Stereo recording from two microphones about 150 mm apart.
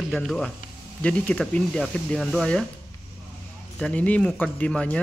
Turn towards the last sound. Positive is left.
turn(degrees=10)  # may be behind; listen again after turning